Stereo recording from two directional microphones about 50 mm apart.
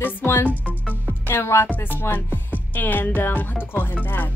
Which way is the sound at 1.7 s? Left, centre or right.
Left.